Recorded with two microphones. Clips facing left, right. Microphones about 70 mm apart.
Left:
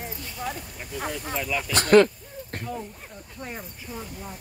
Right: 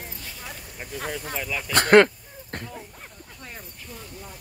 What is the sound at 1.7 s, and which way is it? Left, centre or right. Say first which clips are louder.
Speech: right 1 dB; right.